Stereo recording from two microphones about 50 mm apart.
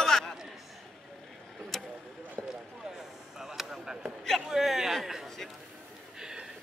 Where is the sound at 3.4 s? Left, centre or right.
Centre.